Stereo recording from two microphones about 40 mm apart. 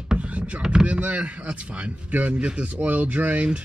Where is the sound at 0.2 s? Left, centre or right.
Right.